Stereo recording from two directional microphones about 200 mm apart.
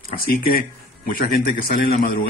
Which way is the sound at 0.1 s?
50° left (ahead or behind).